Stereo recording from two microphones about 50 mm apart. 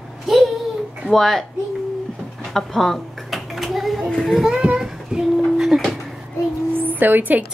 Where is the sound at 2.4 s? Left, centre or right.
Centre.